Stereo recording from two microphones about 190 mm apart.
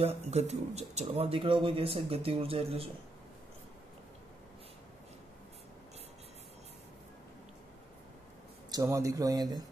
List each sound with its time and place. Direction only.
0.0 s speech: 35° right (ahead or behind)
8.7 s speech: 15° right (ahead or behind)